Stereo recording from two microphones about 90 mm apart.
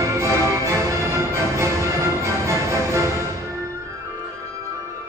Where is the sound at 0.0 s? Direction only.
35° right (ahead or behind).